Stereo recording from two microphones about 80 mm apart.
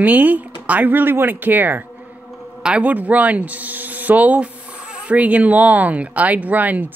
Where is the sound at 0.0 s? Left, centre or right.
Right.